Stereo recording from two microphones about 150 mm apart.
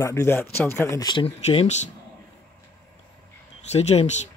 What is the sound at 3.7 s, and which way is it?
Speech, 45° left (ahead or behind).